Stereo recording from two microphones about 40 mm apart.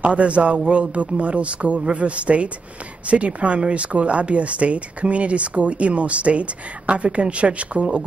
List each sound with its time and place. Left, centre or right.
0.0 s speech: right